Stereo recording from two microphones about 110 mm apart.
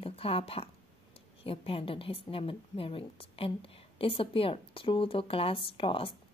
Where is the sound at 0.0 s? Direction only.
60° left (ahead or behind).